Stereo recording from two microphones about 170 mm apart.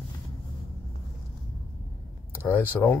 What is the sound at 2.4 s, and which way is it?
Speech, 10° left (ahead or behind).